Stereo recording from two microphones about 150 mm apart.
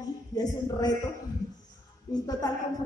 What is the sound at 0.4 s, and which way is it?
Speech, 25° left (ahead or behind).